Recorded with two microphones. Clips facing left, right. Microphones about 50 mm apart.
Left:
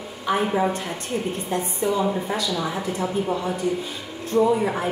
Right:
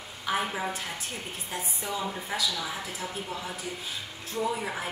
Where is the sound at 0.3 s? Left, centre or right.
Centre.